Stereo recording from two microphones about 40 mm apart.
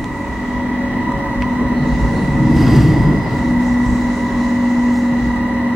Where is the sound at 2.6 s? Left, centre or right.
Centre.